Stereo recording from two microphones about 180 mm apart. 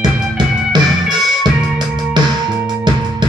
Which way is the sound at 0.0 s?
25° right (ahead or behind).